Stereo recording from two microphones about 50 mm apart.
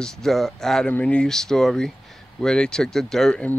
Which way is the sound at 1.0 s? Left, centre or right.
Left.